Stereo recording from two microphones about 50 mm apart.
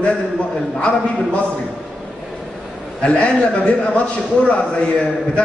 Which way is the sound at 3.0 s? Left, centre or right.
Left.